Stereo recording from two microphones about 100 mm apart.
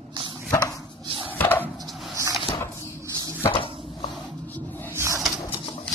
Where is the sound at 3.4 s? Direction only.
65° left (ahead or behind).